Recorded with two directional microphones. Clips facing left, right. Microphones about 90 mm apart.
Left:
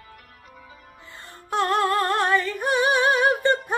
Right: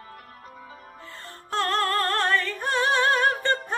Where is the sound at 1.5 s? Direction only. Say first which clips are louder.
Left 3 dB; 15° left (ahead or behind).